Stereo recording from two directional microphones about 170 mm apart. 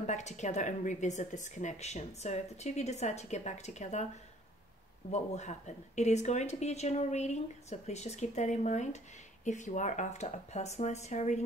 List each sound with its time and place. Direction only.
0.0 s a woman's voice: 45° left (ahead or behind)
5.1 s speech: 40° left (ahead or behind)